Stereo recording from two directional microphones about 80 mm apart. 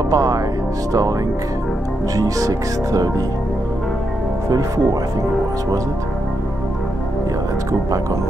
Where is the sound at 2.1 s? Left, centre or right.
Right.